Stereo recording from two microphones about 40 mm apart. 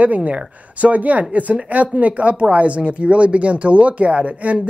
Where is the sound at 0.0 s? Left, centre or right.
Right.